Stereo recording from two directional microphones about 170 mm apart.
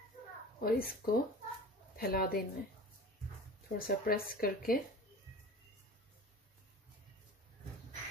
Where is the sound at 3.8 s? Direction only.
60° left (ahead or behind).